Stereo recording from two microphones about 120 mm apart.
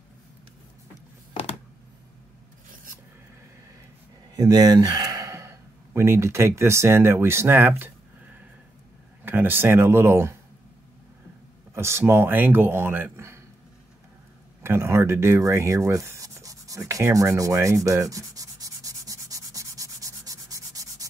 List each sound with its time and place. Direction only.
4.4 s speech: 35° right (ahead or behind)
11.7 s speech: 20° right (ahead or behind)
14.6 s speech: 20° right (ahead or behind)
17.8 s sanding: 25° right (ahead or behind)